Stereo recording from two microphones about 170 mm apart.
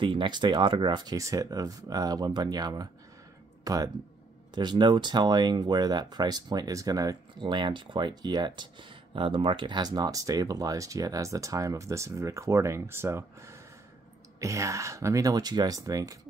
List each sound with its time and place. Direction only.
0.0 s speech: 30° right (ahead or behind)